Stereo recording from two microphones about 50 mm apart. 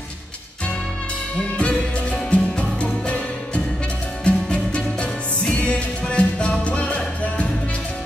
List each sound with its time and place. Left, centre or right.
1.6 s music: centre